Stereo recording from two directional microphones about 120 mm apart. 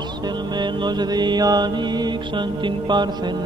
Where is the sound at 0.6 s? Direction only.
35° right (ahead or behind).